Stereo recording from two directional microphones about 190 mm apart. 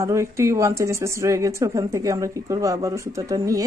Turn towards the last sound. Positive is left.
turn(degrees=-15)  # may be behind; listen again after turning